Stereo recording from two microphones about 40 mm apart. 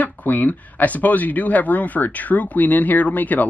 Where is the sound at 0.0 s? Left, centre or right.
Left.